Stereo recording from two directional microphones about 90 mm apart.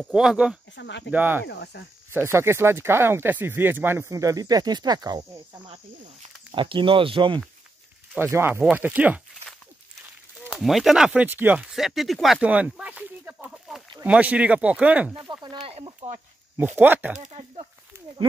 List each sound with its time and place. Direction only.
0.0 s speech: 5° right (ahead or behind)
1.1 s speech: 20° right (ahead or behind)
4.1 s speech: 40° right (ahead or behind)
6.5 s speech: 70° right (ahead or behind)
8.2 s speech: 25° right (ahead or behind)
10.5 s speech: centre (ahead or behind)
11.1 s speech: 20° right (ahead or behind)
11.6 s speech: 5° right (ahead or behind)
12.4 s speech: 15° right (ahead or behind)
13.5 s chicken: 5° right (ahead or behind)
14.0 s speech: 15° right (ahead or behind)
16.5 s speech: 20° right (ahead or behind)
17.9 s a sound: 30° right (ahead or behind)